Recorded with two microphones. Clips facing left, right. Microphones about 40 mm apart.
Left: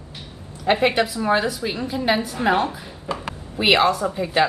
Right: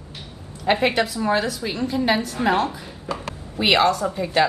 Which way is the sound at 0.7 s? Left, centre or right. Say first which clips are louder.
Left 1 dB; centre.